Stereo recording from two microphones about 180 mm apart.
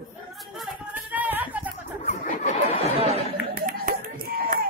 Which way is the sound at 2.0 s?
45° left (ahead or behind).